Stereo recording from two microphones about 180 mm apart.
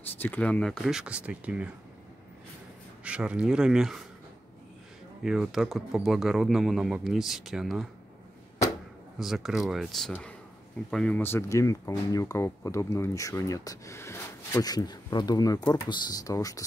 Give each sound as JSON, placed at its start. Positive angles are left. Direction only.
{"t": 0.2, "sound": "speech", "side_deg": 10}
{"t": 3.0, "sound": "speech", "side_deg": -5}
{"t": 5.2, "sound": "speech", "side_deg": 0}
{"t": 9.2, "sound": "speech", "side_deg": 0}